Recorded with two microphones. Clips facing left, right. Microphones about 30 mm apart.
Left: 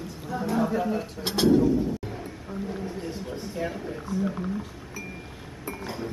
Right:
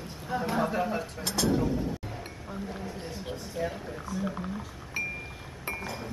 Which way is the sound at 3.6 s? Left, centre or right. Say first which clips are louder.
Left 2 dB; centre.